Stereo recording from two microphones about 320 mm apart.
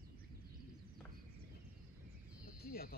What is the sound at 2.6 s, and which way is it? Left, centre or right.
Cricket, left.